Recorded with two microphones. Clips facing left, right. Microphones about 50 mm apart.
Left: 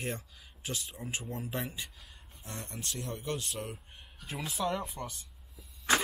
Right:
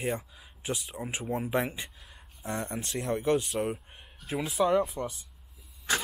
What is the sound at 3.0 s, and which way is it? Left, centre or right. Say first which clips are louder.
Speech: right 11 dB; right.